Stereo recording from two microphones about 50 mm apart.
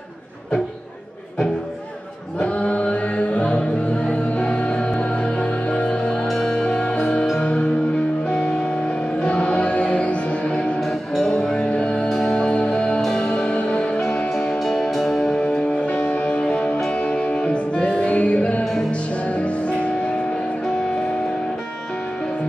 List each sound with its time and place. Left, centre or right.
2.3 s music: left
10.8 s music: centre
11.4 s music: centre
12.1 s music: centre
14.5 s music: centre
15.3 s music: centre
18.6 s music: centre
18.9 s music: left